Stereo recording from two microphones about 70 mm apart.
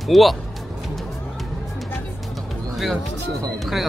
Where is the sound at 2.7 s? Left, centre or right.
Centre.